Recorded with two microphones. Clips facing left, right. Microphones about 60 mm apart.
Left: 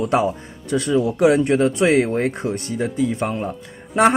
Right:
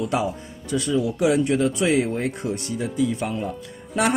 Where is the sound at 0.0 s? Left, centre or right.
Left.